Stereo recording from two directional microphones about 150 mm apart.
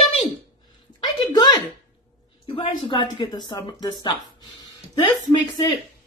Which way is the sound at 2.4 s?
35° left (ahead or behind).